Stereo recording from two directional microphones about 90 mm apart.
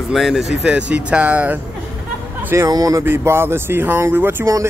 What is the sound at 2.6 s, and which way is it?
Speech, 40° right (ahead or behind).